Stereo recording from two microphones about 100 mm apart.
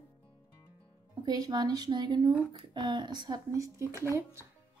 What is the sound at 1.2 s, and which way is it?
Speech, 40° right (ahead or behind).